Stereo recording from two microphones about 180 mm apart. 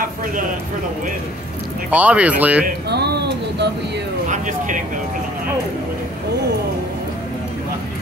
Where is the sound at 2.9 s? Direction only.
65° right (ahead or behind).